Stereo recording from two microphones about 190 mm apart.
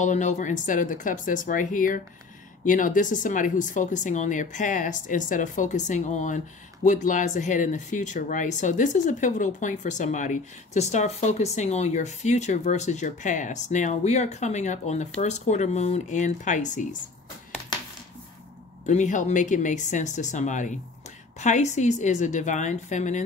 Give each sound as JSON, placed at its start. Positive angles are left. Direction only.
{"t": 0.0, "sound": "speech", "side_deg": 40}
{"t": 18.9, "sound": "speech", "side_deg": 40}